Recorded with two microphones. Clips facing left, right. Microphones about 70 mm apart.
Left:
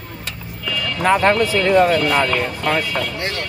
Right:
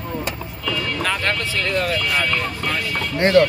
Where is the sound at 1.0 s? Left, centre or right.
Left.